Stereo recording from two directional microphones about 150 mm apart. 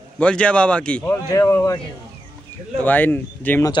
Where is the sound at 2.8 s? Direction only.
10° left (ahead or behind).